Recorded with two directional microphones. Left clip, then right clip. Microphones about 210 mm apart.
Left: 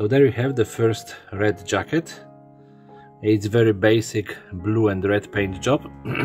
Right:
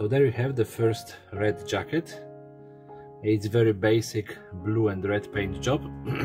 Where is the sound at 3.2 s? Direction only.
25° left (ahead or behind).